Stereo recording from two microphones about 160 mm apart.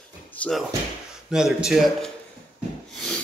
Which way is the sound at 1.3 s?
5° right (ahead or behind).